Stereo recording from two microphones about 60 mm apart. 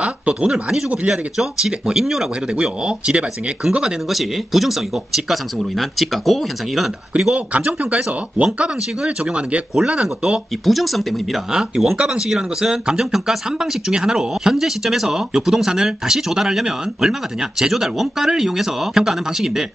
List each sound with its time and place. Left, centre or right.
0.0 s a sound: centre
0.5 s speech: centre
4.1 s speech: centre
7.2 s speech: centre
10.6 s speech: centre